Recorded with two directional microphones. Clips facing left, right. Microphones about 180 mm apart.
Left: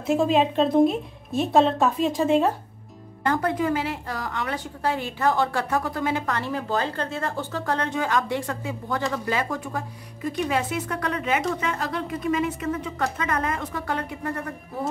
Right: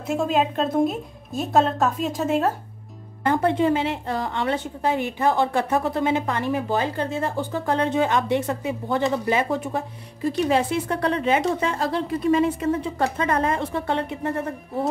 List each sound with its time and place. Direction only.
0.0 s speech: centre (ahead or behind)
3.3 s a woman's voice: 25° right (ahead or behind)